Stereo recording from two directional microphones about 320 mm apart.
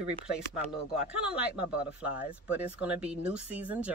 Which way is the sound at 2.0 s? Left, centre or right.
Centre.